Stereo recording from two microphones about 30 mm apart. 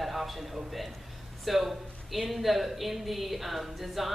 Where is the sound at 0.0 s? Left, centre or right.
Centre.